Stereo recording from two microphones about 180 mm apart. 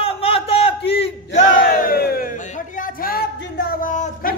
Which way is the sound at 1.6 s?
55° left (ahead or behind).